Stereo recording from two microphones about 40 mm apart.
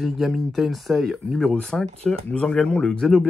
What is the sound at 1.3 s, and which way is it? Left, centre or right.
Speech, centre.